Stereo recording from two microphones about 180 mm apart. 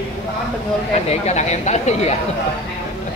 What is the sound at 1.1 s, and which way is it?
Speech, 40° left (ahead or behind).